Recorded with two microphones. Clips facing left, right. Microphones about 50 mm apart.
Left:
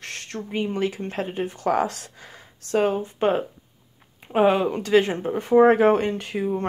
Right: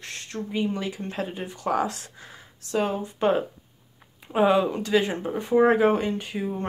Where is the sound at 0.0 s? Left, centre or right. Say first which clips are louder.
Left 3 dB; left.